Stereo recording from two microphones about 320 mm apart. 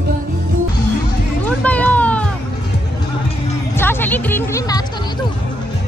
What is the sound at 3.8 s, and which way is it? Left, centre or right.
Music, centre.